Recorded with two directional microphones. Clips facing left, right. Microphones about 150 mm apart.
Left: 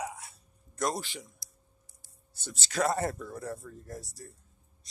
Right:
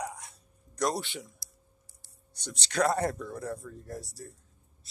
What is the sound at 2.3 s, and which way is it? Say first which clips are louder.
Speech: right 2 dB; 5° left (ahead or behind).